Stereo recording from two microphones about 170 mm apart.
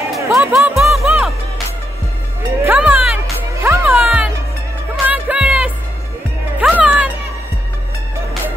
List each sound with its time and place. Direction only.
0.3 s speech: 15° right (ahead or behind)
0.6 s music: centre (ahead or behind)
2.6 s music: 10° right (ahead or behind)